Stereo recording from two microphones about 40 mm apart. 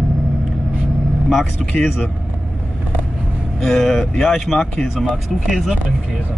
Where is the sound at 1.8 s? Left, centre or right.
Centre.